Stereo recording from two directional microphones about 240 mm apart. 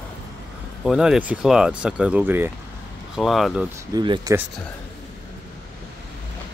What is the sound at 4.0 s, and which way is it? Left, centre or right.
Speech, centre.